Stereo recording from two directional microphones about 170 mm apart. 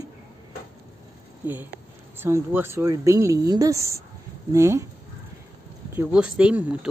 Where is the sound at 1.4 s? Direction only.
10° right (ahead or behind).